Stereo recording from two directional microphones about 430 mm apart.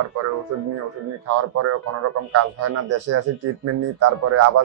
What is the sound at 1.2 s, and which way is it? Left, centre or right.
Speech, right.